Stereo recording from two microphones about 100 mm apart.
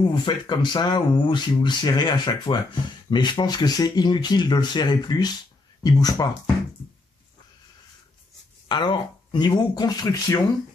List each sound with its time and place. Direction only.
0.1 s speech: 50° left (ahead or behind)
8.6 s speech: 50° left (ahead or behind)